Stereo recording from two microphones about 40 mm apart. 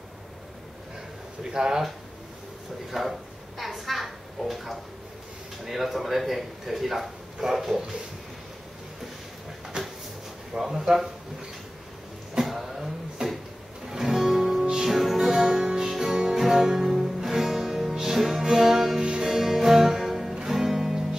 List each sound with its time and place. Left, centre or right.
1.4 s speech: centre
2.9 s a sound: centre
5.7 s speech: centre
10.6 s speech: centre
12.4 s a sound: centre
13.8 s music: centre